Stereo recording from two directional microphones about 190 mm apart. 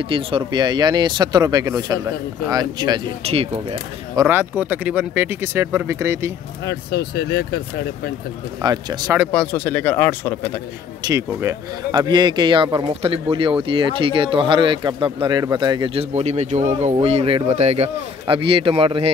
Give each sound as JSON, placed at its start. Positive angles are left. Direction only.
{"t": 0.1, "sound": "speech", "side_deg": -25}
{"t": 4.1, "sound": "speech", "side_deg": -15}
{"t": 6.6, "sound": "speech", "side_deg": 60}
{"t": 8.6, "sound": "speech", "side_deg": -20}
{"t": 9.3, "sound": "speech", "side_deg": 10}
{"t": 11.1, "sound": "speech", "side_deg": -15}